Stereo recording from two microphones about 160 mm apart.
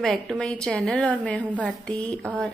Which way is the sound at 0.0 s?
5° left (ahead or behind).